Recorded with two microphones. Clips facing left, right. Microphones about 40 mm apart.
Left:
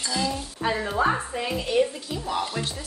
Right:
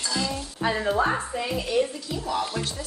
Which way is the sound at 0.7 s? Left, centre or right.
Centre.